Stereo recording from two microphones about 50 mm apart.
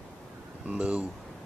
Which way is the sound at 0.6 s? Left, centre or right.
Right.